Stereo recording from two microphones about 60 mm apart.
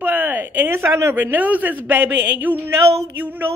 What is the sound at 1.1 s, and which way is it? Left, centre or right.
A man's voice, right.